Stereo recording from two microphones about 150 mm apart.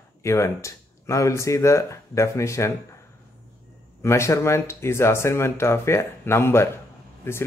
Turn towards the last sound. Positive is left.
turn(degrees=15)  # may be behind; listen again after turning